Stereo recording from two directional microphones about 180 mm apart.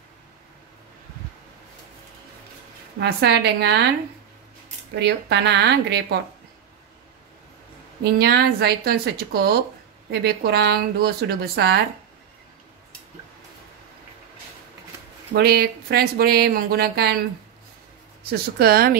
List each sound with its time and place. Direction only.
3.0 s speech: 70° right (ahead or behind)
5.0 s speech: 70° right (ahead or behind)
8.0 s speech: 60° right (ahead or behind)
15.3 s speech: 60° right (ahead or behind)
18.6 s speech: 55° right (ahead or behind)